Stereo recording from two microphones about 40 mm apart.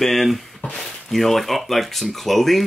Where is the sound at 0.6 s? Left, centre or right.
Left.